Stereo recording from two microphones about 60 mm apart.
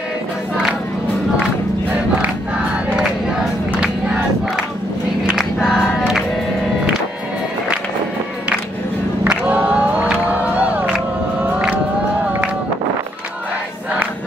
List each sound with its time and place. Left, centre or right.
5.3 s choir: centre
5.9 s music: centre
9.3 s music: right